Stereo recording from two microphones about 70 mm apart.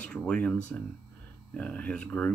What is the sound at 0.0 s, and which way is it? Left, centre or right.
Speech, centre.